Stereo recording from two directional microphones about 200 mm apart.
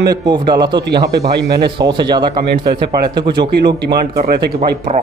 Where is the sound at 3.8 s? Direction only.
55° right (ahead or behind).